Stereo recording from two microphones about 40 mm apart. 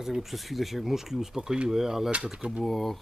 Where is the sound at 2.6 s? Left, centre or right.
Centre.